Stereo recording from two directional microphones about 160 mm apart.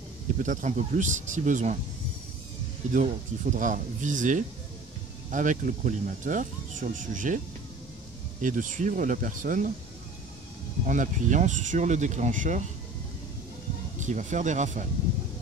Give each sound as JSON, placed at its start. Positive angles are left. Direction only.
{"t": 0.4, "sound": "speech", "side_deg": -50}
{"t": 2.9, "sound": "speech", "side_deg": -55}
{"t": 8.4, "sound": "speech", "side_deg": -55}
{"t": 10.9, "sound": "speech", "side_deg": -50}
{"t": 13.9, "sound": "speech", "side_deg": -50}